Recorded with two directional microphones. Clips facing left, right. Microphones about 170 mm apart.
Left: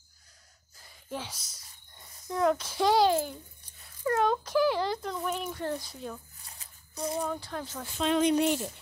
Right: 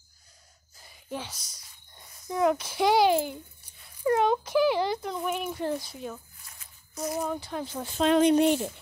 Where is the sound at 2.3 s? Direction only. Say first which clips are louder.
Right 2 dB; 10° right (ahead or behind).